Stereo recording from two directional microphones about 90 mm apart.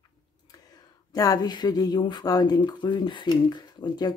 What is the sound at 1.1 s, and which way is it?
Speech, 45° left (ahead or behind).